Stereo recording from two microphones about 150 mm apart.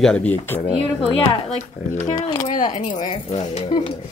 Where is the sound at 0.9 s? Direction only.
40° left (ahead or behind).